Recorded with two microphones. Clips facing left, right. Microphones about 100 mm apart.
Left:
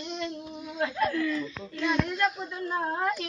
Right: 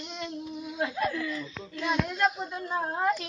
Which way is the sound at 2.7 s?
10° right (ahead or behind).